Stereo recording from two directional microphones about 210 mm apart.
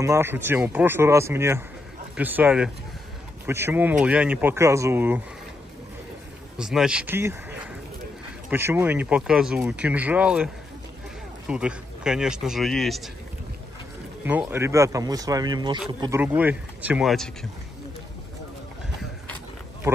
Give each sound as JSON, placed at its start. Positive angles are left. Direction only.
{"t": 0.0, "sound": "speech", "side_deg": -15}
{"t": 6.6, "sound": "a man's voice", "side_deg": -5}
{"t": 8.5, "sound": "a man's voice", "side_deg": -10}
{"t": 14.2, "sound": "speech", "side_deg": -10}
{"t": 16.2, "sound": "speech", "side_deg": -10}